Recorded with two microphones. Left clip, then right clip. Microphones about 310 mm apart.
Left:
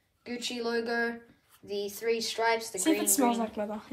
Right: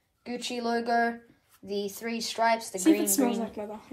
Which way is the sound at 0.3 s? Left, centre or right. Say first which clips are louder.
Right 2 dB; centre.